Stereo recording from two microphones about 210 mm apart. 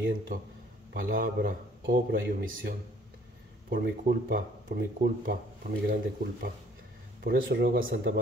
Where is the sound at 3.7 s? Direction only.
45° right (ahead or behind).